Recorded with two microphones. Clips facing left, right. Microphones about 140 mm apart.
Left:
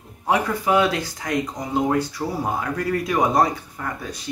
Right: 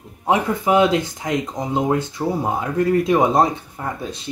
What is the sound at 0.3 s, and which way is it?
Speech, 20° right (ahead or behind).